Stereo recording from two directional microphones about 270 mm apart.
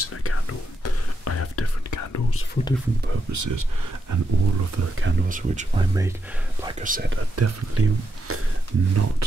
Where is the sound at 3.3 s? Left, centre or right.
Right.